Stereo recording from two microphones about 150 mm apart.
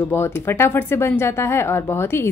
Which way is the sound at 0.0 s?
15° left (ahead or behind).